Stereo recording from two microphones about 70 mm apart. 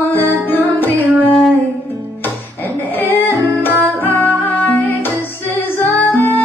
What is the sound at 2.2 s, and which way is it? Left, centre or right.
Music, left.